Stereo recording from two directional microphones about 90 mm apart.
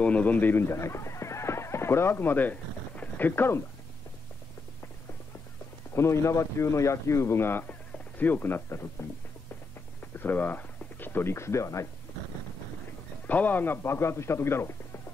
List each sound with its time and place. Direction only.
0.0 s speech: 15° left (ahead or behind)
5.9 s speech: 30° left (ahead or behind)
10.1 s speech: 20° left (ahead or behind)
13.3 s speech: 20° left (ahead or behind)